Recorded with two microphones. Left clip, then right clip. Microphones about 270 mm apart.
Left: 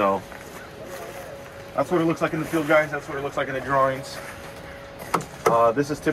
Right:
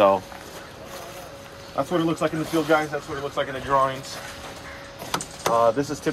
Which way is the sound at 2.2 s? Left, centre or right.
Centre.